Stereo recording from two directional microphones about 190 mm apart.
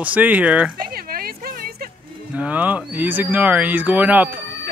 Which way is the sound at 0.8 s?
50° right (ahead or behind).